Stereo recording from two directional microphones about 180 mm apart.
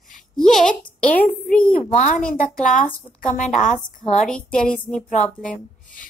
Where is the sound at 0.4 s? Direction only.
5° left (ahead or behind).